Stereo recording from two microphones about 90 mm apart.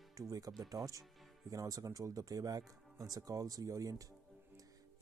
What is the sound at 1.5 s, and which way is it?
Speech, 40° right (ahead or behind).